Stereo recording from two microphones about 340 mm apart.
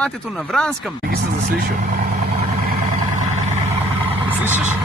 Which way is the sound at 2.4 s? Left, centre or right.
Right.